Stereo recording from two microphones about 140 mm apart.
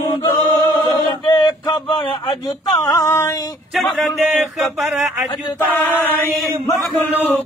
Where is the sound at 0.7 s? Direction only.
30° left (ahead or behind).